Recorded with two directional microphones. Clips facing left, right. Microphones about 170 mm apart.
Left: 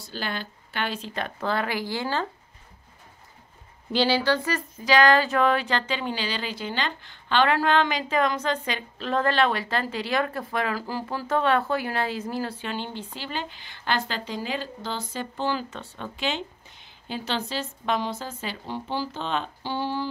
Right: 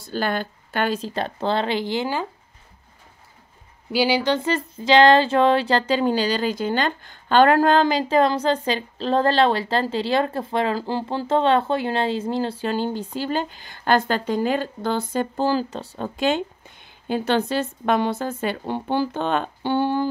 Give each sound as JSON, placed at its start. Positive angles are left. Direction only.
{"t": 0.0, "sound": "speech", "side_deg": -50}
{"t": 3.9, "sound": "speech", "side_deg": -15}
{"t": 15.3, "sound": "a woman's voice", "side_deg": -40}